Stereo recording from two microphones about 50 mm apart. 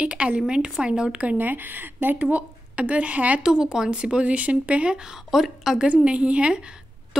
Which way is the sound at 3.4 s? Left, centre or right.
Centre.